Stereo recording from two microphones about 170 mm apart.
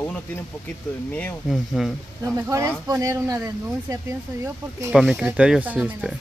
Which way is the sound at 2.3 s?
15° right (ahead or behind).